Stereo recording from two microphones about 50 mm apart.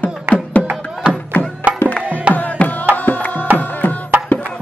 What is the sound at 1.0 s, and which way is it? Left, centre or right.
Music, right.